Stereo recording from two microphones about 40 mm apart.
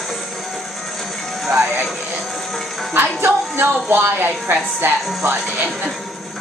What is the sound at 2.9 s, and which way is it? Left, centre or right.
A woman's voice, right.